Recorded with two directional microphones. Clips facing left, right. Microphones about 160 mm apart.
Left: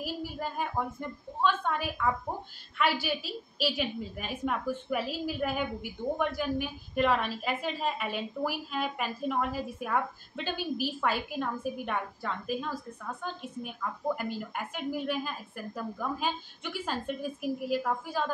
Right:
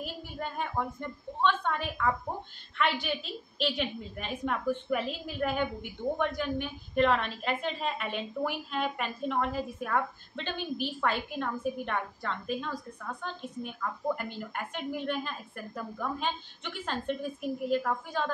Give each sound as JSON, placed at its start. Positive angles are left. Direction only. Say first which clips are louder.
{"t": 0.0, "sound": "a woman's voice", "louder": "left 3 dB", "side_deg": 5}